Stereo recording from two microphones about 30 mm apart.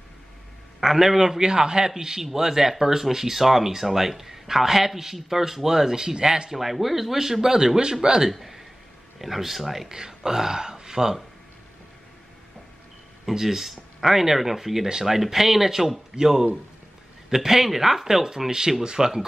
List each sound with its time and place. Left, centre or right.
0.7 s speech: centre; by 6.5 s right
6.5 s speech: centre
8.3 s a sound: centre
9.2 s speech: centre
9.8 s speech: right
13.3 s speech: centre